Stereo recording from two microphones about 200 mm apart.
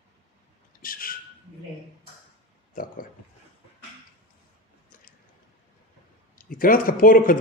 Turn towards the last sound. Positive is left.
turn(degrees=45)  # may be behind; listen again after turning